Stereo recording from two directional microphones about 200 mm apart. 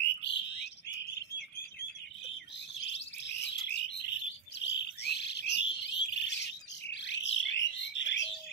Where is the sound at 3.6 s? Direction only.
60° left (ahead or behind).